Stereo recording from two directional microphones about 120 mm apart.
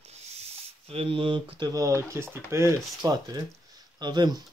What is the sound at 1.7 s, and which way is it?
Speech, 25° right (ahead or behind).